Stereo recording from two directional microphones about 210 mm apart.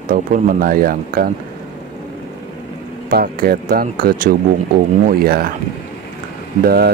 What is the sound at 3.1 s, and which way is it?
Speech, 45° right (ahead or behind).